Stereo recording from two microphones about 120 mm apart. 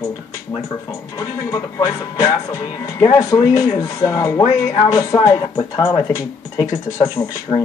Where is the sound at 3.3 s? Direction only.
35° left (ahead or behind).